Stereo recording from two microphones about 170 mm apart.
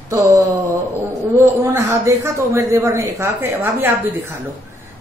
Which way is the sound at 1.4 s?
15° right (ahead or behind).